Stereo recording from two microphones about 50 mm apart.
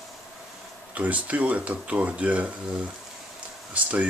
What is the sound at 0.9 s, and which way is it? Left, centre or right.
Speech, right.